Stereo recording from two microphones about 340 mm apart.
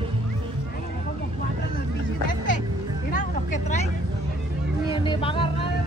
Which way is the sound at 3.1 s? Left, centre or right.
Left.